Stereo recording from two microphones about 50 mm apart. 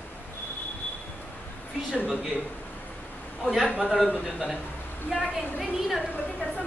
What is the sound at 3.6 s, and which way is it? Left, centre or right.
Speech, right.